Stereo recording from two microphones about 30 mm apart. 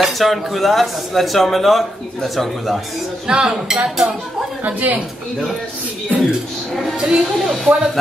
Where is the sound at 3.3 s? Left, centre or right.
Right.